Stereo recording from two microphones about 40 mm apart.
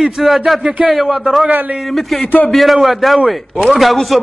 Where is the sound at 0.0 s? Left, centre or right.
Centre.